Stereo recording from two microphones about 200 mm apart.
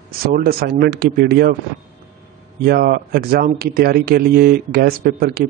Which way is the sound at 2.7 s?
50° right (ahead or behind).